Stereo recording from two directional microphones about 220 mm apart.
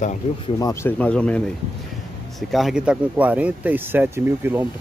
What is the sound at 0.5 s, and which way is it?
Speech, 15° left (ahead or behind).